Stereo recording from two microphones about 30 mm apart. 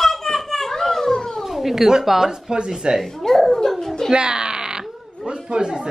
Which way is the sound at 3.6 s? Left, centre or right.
Centre.